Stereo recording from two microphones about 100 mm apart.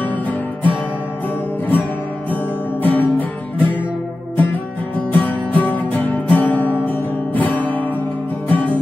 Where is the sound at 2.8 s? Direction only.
15° left (ahead or behind).